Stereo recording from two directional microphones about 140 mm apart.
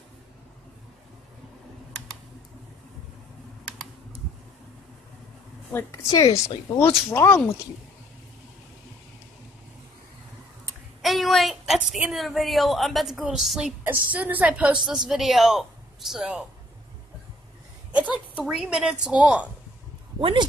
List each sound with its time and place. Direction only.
5.7 s speech: 20° left (ahead or behind)
11.0 s a sound: centre (ahead or behind)
12.0 s a woman's voice: centre (ahead or behind)
14.1 s a woman's voice: 10° right (ahead or behind)
17.9 s a sound: 10° right (ahead or behind)
18.5 s a woman's voice: 5° right (ahead or behind)
20.2 s speech: 40° right (ahead or behind)